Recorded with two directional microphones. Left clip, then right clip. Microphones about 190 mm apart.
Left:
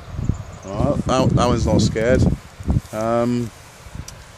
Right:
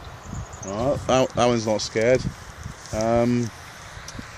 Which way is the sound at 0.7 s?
5° right (ahead or behind).